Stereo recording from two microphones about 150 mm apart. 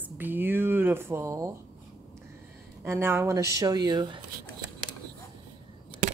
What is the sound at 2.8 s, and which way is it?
A woman's voice, 15° right (ahead or behind).